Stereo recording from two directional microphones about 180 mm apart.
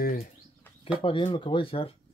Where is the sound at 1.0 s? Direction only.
30° left (ahead or behind).